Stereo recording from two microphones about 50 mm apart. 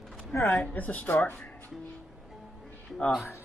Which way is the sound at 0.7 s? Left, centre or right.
Left.